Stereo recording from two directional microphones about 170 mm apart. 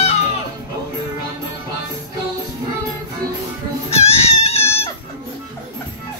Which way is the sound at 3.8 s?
35° left (ahead or behind).